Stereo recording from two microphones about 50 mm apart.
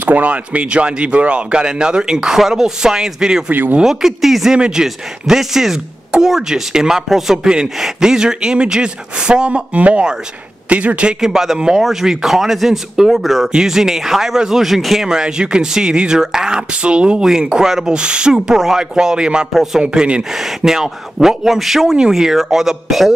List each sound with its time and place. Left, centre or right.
0.0 s speech: right; by 4.6 s centre
4.6 s speech: centre
9.8 s speech: right
11.1 s speech: centre
15.0 s speech: centre
20.3 s speech: centre